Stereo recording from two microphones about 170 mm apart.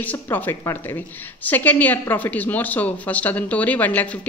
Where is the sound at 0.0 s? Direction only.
10° left (ahead or behind).